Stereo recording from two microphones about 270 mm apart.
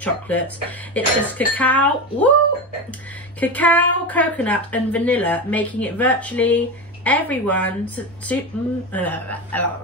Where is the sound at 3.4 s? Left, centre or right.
Centre.